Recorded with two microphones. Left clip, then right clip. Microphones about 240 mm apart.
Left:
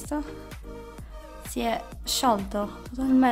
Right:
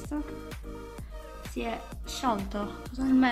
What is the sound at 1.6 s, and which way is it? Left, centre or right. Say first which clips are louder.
Speech: left 7 dB; left.